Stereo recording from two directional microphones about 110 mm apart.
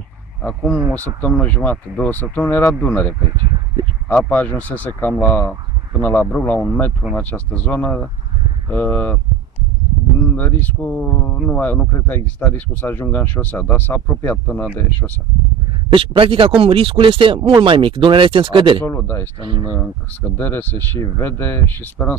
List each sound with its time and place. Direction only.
0.4 s speech: 5° left (ahead or behind)
10.3 s speech: 15° left (ahead or behind)
15.9 s speech: 55° right (ahead or behind)
18.9 s speech: 20° left (ahead or behind)
19.4 s speech: 50° right (ahead or behind)
19.8 s speech: 15° left (ahead or behind)